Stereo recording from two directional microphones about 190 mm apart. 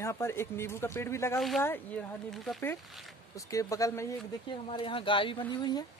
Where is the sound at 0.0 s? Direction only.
15° left (ahead or behind).